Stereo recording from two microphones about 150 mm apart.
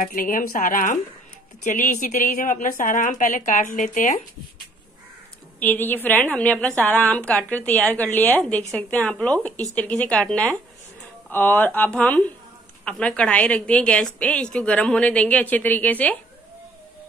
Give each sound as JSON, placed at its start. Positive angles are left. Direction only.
{"t": 0.0, "sound": "a woman's voice", "side_deg": 65}
{"t": 5.6, "sound": "a woman's voice", "side_deg": 10}